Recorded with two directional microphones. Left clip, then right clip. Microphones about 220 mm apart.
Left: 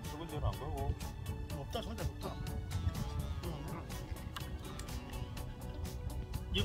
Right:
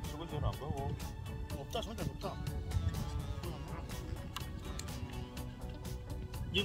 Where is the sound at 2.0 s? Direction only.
Centre (ahead or behind).